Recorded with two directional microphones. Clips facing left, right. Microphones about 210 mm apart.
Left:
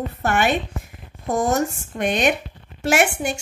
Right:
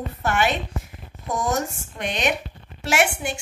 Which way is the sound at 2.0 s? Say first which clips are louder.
Left 5 dB; 50° left (ahead or behind).